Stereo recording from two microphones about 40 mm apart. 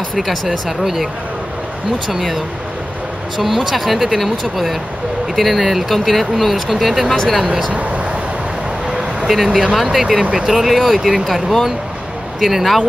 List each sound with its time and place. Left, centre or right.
0.2 s speech: centre
2.1 s speech: centre
7.7 s speech: right
9.3 s speech: centre